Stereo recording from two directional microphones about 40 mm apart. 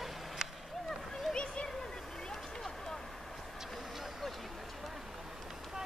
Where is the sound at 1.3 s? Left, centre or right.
Left.